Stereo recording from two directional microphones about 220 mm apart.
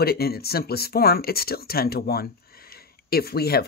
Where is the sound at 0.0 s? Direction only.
45° left (ahead or behind).